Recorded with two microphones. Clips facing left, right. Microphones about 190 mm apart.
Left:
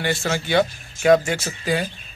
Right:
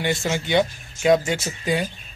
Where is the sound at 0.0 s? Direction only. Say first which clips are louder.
Even; 20° right (ahead or behind).